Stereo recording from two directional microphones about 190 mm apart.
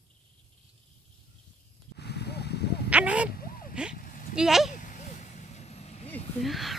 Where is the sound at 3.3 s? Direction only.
50° left (ahead or behind).